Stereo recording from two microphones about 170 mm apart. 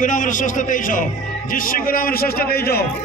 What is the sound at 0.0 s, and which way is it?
A man's voice, 50° left (ahead or behind).